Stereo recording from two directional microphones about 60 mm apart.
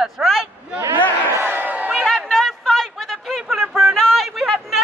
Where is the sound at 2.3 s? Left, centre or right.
Centre.